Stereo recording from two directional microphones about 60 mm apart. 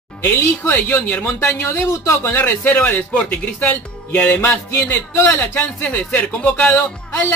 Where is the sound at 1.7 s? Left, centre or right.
Left.